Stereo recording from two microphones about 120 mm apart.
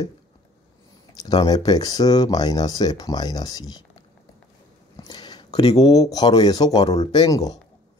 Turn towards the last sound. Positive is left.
turn(degrees=30)  # may be behind; listen again after turning